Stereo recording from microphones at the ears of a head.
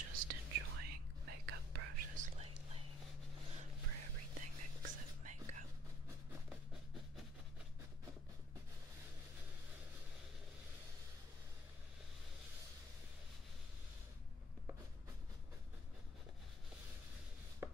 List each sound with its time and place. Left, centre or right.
0.0 s whispering: right
3.8 s whispering: right